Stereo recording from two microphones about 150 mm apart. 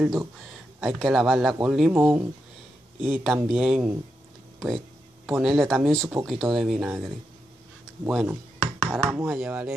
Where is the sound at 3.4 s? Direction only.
5° right (ahead or behind).